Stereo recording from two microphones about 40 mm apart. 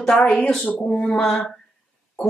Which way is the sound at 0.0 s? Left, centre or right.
Centre.